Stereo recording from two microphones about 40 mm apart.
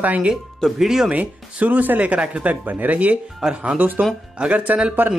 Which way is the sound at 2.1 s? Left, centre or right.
Right.